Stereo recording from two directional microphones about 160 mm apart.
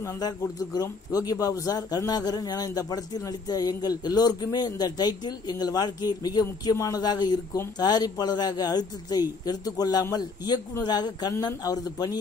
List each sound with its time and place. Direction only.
0.7 s a man's voice: 25° left (ahead or behind)